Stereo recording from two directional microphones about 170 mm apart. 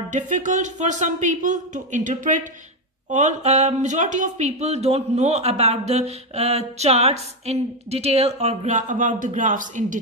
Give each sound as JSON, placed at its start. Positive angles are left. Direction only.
{"t": 0.1, "sound": "speech", "side_deg": -45}